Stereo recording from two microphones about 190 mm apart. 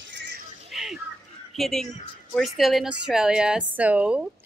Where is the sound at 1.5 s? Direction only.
Centre (ahead or behind).